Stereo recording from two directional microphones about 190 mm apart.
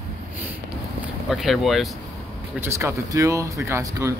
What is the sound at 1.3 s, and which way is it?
Speech, centre (ahead or behind).